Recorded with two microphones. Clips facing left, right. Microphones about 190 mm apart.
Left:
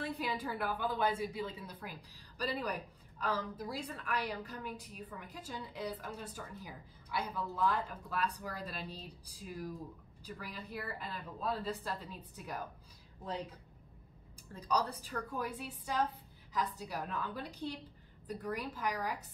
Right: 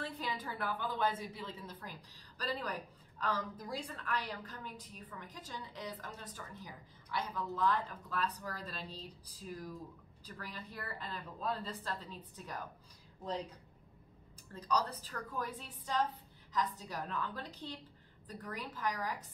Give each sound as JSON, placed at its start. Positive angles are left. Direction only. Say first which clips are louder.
{"t": 0.0, "sound": "a woman's voice", "louder": "left 3 dB", "side_deg": 10}
{"t": 14.5, "sound": "a woman's voice", "louder": "left 1 dB", "side_deg": 10}